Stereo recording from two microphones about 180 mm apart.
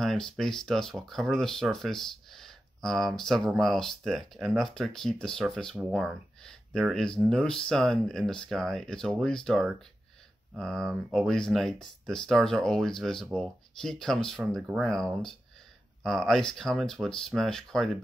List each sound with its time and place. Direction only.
0.0 s speech: centre (ahead or behind)